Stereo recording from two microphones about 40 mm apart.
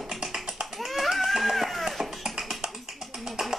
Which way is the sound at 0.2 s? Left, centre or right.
Right.